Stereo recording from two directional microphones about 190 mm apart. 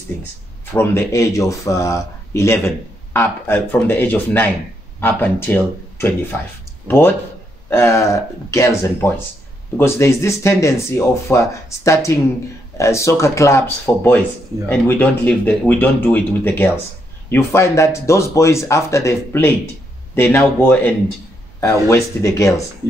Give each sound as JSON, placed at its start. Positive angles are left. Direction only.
{"t": 0.7, "sound": "a man's voice", "side_deg": 15}